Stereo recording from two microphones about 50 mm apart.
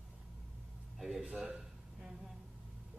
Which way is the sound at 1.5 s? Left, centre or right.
Centre.